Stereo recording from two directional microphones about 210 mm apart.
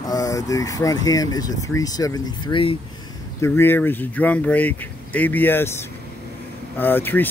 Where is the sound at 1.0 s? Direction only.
15° left (ahead or behind).